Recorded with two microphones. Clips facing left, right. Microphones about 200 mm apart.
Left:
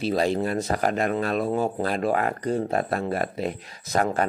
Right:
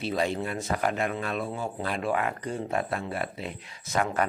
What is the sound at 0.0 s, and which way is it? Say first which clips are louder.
Speech: left 5 dB; 35° left (ahead or behind).